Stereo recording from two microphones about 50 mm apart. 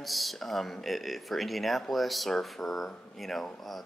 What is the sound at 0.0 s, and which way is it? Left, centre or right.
Speech, centre.